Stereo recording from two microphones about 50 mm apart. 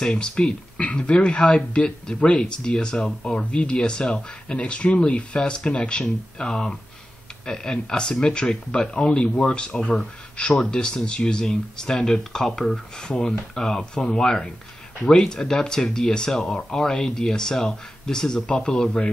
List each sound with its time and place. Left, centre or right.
0.0 s speech: centre